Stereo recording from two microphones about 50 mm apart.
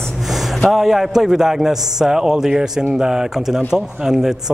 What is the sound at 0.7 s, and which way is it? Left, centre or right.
A man's voice, centre.